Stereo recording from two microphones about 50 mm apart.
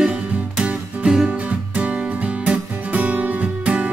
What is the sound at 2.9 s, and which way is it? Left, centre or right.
Music, right.